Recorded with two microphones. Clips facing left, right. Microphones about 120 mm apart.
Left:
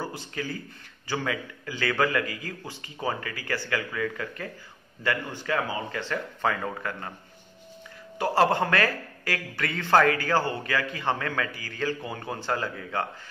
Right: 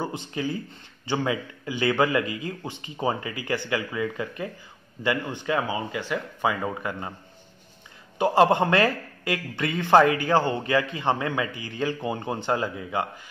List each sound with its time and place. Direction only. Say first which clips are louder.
0.0 s a man's voice: right 4 dB; 20° right (ahead or behind)
8.2 s a man's voice: right 3 dB; 20° right (ahead or behind)